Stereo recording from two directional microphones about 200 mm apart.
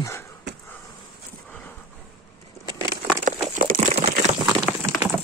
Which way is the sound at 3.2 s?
40° right (ahead or behind).